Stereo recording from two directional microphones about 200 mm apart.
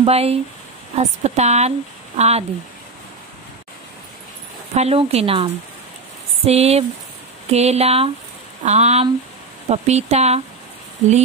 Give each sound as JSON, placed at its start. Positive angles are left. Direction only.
{"t": 0.0, "sound": "speech", "side_deg": -30}
{"t": 4.7, "sound": "a woman's voice", "side_deg": -30}